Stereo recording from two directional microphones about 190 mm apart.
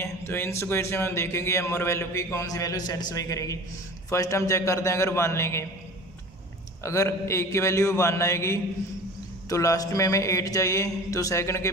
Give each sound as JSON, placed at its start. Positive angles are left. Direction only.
{"t": 0.0, "sound": "a man's voice", "side_deg": 15}
{"t": 6.8, "sound": "a man's voice", "side_deg": 15}